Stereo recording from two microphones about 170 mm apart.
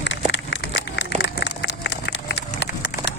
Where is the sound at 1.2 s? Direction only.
90° left.